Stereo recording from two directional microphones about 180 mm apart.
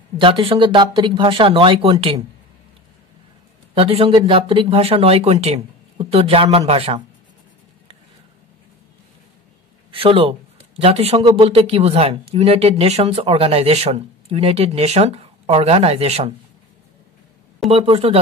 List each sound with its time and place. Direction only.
0.2 s speech: 30° right (ahead or behind)
3.7 s speech: 30° right (ahead or behind)
9.8 s a man's voice: 30° right (ahead or behind)
17.6 s speech: 30° right (ahead or behind)